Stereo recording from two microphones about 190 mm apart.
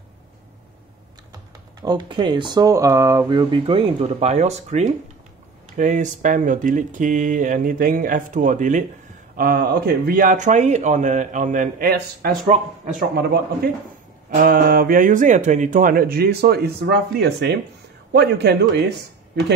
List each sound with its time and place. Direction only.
1.8 s speech: 25° right (ahead or behind); by 12.5 s 50° right (ahead or behind)
14.3 s a man's voice: 50° right (ahead or behind)